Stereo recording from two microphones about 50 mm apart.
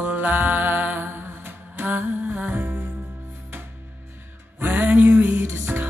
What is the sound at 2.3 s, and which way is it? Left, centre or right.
Music, right.